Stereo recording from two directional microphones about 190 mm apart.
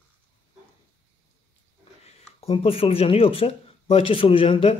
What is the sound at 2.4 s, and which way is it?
Speech, 30° left (ahead or behind).